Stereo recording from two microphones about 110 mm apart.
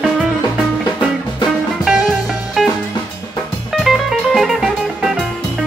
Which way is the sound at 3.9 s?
Centre (ahead or behind).